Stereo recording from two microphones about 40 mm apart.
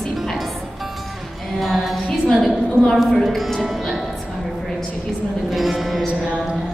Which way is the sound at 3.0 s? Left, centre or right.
Centre.